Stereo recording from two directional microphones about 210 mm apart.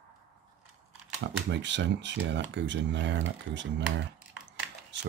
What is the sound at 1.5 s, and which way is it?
Speech, 60° right (ahead or behind).